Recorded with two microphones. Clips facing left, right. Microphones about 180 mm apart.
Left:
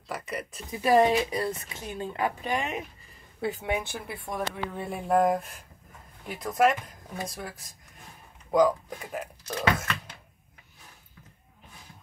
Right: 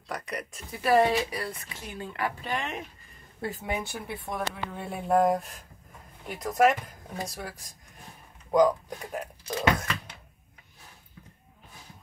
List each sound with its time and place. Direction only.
0.1 s speech: 5° left (ahead or behind)
0.7 s speech: 15° left (ahead or behind)